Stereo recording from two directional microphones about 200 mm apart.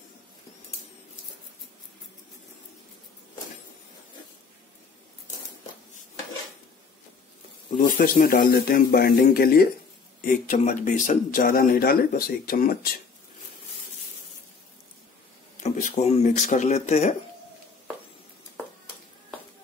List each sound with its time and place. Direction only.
7.7 s speech: 45° left (ahead or behind)
15.6 s speech: 35° left (ahead or behind)